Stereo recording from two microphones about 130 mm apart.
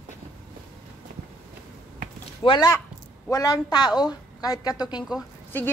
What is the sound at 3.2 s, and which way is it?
A woman's voice, 25° left (ahead or behind).